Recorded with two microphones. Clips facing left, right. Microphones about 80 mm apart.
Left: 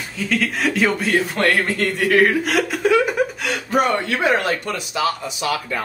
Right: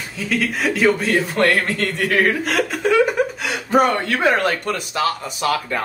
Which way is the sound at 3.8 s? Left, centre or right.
Right.